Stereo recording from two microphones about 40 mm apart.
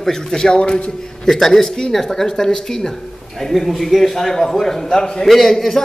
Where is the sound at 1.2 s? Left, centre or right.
Centre.